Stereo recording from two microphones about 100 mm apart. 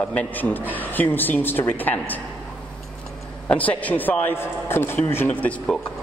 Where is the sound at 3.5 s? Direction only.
15° left (ahead or behind).